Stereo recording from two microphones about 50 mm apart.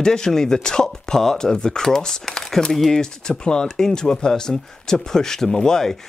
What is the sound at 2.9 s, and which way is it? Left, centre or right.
Speech, centre.